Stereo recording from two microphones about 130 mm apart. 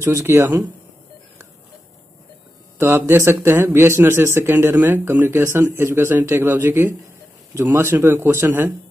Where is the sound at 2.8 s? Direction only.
20° right (ahead or behind).